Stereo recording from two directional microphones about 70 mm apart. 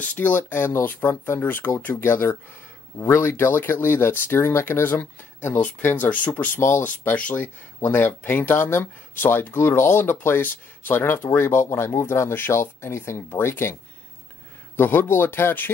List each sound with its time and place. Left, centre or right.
0.1 s speech: left
14.8 s speech: left